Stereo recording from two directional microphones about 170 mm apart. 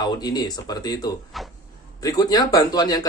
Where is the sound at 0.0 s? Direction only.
25° left (ahead or behind).